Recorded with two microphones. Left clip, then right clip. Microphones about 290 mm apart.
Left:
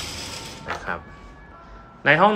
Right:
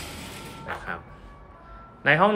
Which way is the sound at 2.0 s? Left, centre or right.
Centre.